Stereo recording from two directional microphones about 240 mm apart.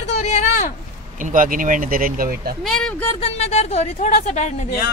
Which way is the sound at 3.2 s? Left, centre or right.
Left.